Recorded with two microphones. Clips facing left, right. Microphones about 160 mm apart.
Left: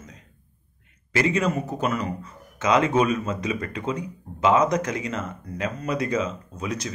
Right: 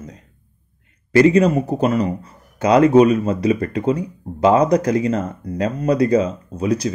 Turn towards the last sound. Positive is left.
turn(degrees=-35)  # may be behind; listen again after turning